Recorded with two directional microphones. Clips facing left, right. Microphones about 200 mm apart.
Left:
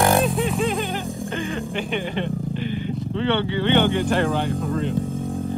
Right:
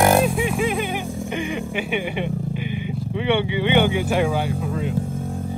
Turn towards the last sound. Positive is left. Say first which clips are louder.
# left 1 dB
turn(degrees=0)  # may be behind; listen again after turning